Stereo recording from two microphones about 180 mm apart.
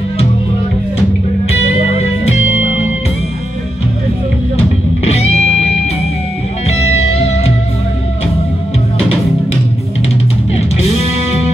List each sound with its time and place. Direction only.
5.0 s music: 35° left (ahead or behind)